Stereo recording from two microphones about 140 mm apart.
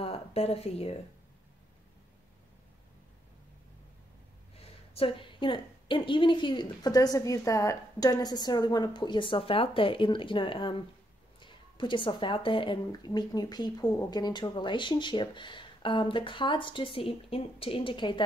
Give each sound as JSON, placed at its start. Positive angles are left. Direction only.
{"t": 0.0, "sound": "speech", "side_deg": 45}
{"t": 4.6, "sound": "speech", "side_deg": 40}